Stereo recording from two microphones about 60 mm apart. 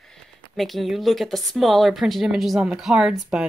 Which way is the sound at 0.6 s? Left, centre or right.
Centre.